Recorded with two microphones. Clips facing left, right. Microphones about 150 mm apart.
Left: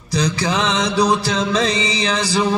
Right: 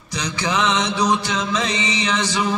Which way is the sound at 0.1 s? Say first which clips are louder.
Left 4 dB; 35° left (ahead or behind).